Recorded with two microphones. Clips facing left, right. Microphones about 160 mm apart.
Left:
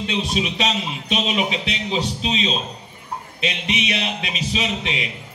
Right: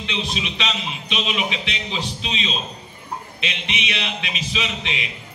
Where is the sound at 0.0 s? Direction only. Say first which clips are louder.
Left 4 dB; 40° left (ahead or behind).